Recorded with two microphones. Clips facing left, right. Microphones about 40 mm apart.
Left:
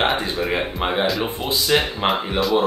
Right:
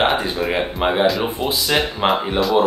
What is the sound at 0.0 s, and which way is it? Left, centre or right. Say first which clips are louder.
Speech: right 2 dB; centre.